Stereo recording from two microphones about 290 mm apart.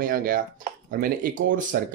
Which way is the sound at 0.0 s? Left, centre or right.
Right.